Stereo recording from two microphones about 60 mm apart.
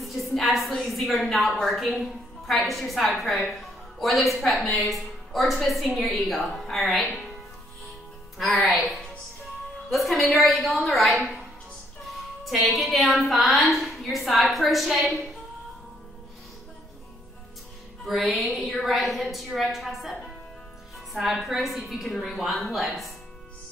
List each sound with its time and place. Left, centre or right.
0.2 s a woman's voice: centre
8.4 s a woman's voice: centre
12.6 s a woman's voice: centre
18.0 s a woman's voice: centre